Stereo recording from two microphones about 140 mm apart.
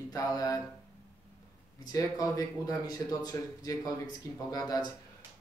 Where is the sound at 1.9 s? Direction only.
25° left (ahead or behind).